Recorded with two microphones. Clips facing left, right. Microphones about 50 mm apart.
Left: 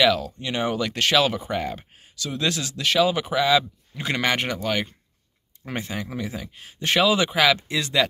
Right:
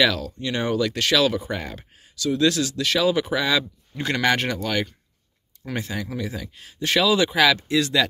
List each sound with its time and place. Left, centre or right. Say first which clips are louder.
0.0 s speech: left 1 dB; centre
3.3 s speech: left 3 dB; centre